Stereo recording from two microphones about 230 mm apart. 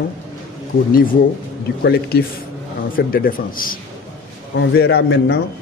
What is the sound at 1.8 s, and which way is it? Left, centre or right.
A man's voice, left.